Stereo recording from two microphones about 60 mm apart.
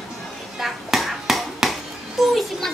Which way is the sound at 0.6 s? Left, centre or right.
Centre.